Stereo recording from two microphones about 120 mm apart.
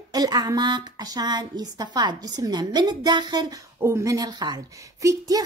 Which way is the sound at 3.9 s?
25° right (ahead or behind).